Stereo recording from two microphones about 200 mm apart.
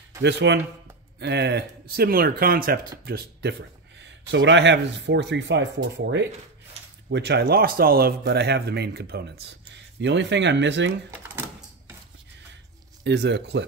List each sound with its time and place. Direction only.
0.2 s speech: 60° right (ahead or behind)
4.3 s speech: 65° right (ahead or behind)
9.9 s speech: 60° right (ahead or behind)
13.0 s speech: 60° right (ahead or behind)